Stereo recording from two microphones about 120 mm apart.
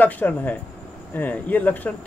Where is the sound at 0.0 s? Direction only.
15° left (ahead or behind).